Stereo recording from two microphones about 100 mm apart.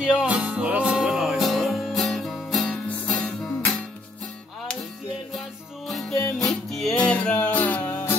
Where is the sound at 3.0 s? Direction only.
15° left (ahead or behind).